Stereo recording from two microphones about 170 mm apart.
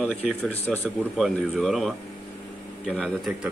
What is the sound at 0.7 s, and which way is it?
Speech, 5° left (ahead or behind).